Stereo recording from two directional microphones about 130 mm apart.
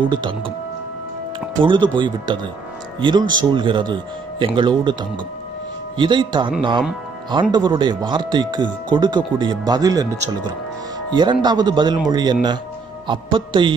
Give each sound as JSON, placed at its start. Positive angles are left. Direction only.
{"t": 0.0, "sound": "speech", "side_deg": -35}
{"t": 1.6, "sound": "speech", "side_deg": -40}
{"t": 5.9, "sound": "speech", "side_deg": -35}
{"t": 11.1, "sound": "speech", "side_deg": -35}